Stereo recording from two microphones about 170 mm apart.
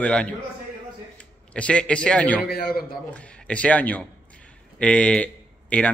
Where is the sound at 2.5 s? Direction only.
65° left (ahead or behind).